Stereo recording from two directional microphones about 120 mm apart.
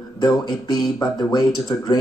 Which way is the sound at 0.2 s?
35° left (ahead or behind).